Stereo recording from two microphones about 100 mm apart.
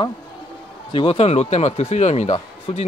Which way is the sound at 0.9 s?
70° left (ahead or behind).